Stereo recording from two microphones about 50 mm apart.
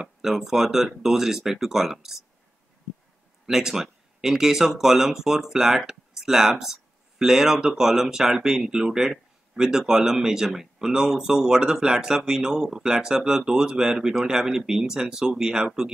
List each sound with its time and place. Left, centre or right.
0.2 s speech: centre
3.4 s speech: centre